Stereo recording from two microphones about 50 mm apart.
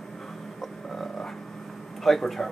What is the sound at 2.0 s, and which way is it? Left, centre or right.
Speech, centre.